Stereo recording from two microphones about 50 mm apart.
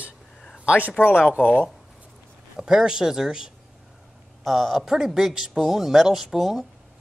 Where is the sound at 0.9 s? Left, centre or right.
Left.